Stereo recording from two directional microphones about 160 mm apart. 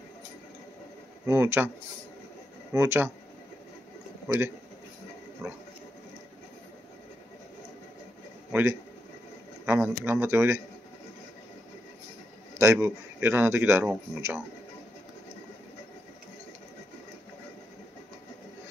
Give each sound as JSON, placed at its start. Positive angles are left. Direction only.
{"t": 1.2, "sound": "a man's voice", "side_deg": -15}
{"t": 2.7, "sound": "a man's voice", "side_deg": -15}
{"t": 4.3, "sound": "a man's voice", "side_deg": -20}
{"t": 8.5, "sound": "a man's voice", "side_deg": -10}
{"t": 12.5, "sound": "a man's voice", "side_deg": -15}